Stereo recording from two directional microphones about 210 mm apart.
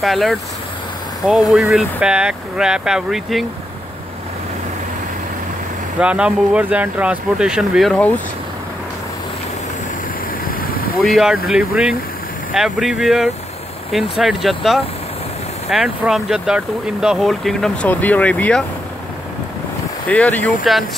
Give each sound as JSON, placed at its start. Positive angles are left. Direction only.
{"t": 0.0, "sound": "speech", "side_deg": 0}
{"t": 5.9, "sound": "speech", "side_deg": -5}
{"t": 10.5, "sound": "vehicle", "side_deg": 45}
{"t": 11.0, "sound": "speech", "side_deg": 0}
{"t": 20.1, "sound": "speech", "side_deg": 5}